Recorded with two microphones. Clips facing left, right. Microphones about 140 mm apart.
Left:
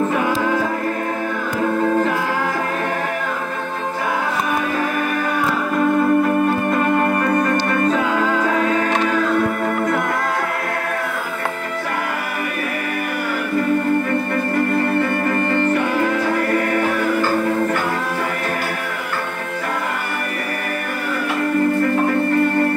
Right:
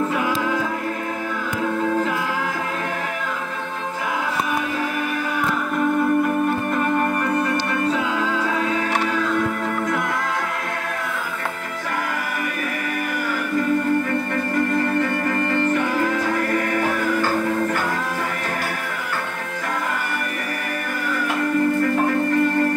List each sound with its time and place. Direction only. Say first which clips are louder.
0.1 s music: left 3 dB; 35° left (ahead or behind)
1.6 s music: left 4 dB; 50° left (ahead or behind)
5.8 s music: left 3 dB; 65° left (ahead or behind)
16.0 s music: left 3 dB; 60° left (ahead or behind)